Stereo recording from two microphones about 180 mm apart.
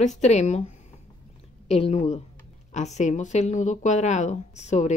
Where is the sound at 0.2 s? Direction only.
40° left (ahead or behind).